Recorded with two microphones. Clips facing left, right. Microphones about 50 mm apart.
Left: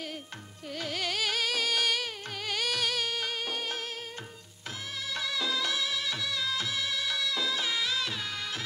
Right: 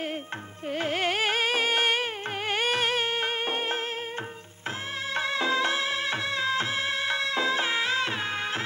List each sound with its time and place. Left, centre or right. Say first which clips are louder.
0.7 s music: right 7 dB; right
5.1 s music: right 6 dB; right